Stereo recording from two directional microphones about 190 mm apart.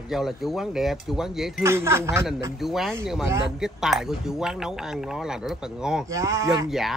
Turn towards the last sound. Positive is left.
turn(degrees=-20)  # may be behind; listen again after turning